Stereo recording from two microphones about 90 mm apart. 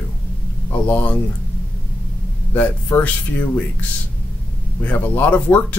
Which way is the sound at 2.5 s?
20° left (ahead or behind).